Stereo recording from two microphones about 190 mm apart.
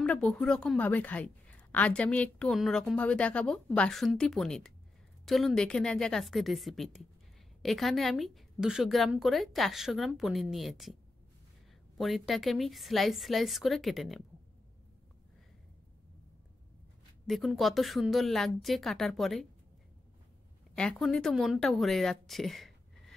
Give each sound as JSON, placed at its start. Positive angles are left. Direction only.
{"t": 0.0, "sound": "a woman's voice", "side_deg": 5}
{"t": 12.0, "sound": "a woman's voice", "side_deg": 0}
{"t": 17.3, "sound": "a woman's voice", "side_deg": 0}
{"t": 20.7, "sound": "speech", "side_deg": 5}